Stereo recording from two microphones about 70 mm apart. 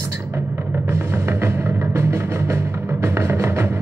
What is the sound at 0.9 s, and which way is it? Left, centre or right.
Music, right.